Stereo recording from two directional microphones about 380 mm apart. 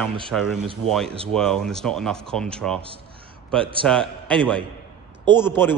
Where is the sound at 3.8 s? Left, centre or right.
Centre.